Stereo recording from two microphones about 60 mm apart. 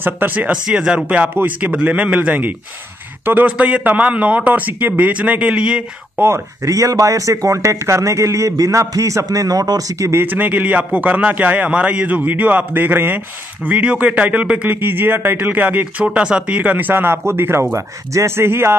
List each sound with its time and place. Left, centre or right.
0.0 s speech: right
0.5 s a man's voice: centre
6.2 s speech: right
10.2 s a man's voice: right
14.8 s a man's voice: right; by 16.7 s centre
16.7 s speech: right
17.7 s speech: right
18.3 s speech: right